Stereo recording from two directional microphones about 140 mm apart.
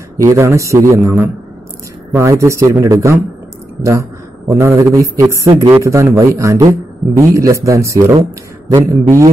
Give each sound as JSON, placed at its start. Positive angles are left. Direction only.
{"t": 0.2, "sound": "a man's voice", "side_deg": -20}